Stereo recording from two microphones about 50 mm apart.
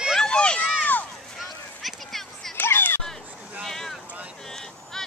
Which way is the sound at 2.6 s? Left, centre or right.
Left.